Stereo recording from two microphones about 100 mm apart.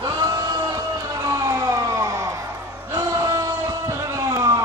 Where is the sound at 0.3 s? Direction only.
40° right (ahead or behind).